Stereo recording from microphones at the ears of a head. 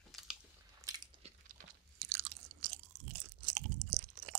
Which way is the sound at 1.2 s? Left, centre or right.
Right.